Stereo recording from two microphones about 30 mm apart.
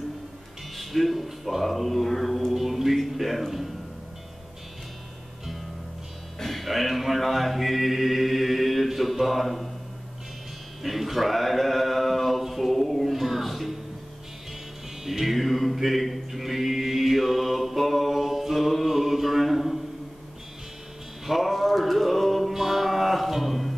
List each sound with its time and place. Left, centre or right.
0.7 s speech: centre
2.5 s speech: centre
6.4 s mantra: centre
10.8 s a sound: centre
15.0 s music: centre
21.3 s male singing: centre
22.5 s music: centre